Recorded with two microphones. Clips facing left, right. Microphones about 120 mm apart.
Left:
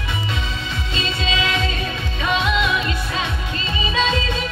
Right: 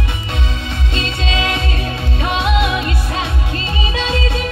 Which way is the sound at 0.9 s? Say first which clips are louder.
Right 2 dB; 60° right (ahead or behind).